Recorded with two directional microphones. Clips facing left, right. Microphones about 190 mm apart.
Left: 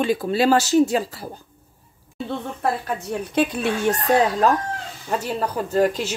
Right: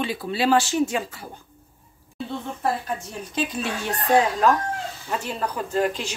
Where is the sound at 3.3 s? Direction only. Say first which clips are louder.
Left 5 dB; 60° left (ahead or behind).